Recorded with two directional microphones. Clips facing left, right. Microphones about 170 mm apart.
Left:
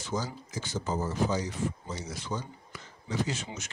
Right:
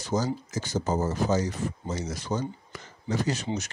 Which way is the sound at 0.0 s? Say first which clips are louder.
Right 6 dB; 40° right (ahead or behind).